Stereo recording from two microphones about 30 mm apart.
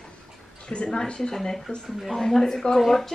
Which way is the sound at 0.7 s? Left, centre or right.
Left.